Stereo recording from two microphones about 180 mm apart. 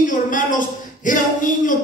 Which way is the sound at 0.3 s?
45° left (ahead or behind).